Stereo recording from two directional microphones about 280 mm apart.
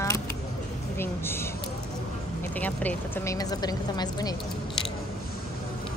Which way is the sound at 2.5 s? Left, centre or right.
Centre.